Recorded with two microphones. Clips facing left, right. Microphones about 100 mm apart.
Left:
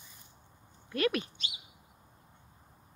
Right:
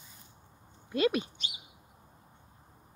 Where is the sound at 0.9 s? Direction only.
20° right (ahead or behind).